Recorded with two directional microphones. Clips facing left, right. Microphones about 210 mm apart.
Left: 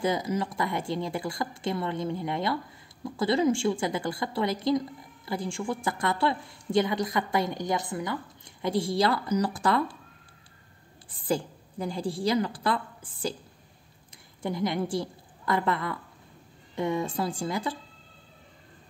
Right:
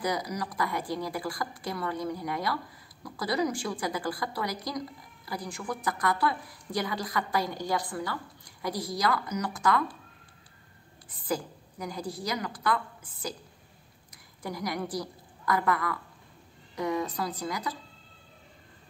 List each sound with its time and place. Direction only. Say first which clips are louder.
0.0 s speech: left 4 dB; 25° left (ahead or behind)
11.1 s a woman's voice: left 3 dB; 30° left (ahead or behind)